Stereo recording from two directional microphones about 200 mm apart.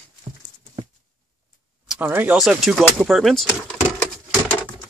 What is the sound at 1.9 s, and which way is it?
Speech, 10° right (ahead or behind).